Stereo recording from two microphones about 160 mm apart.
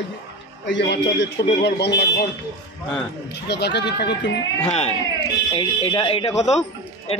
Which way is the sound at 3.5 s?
90° left.